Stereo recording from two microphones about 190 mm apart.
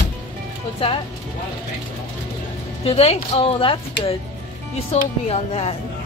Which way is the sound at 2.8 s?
30° left (ahead or behind).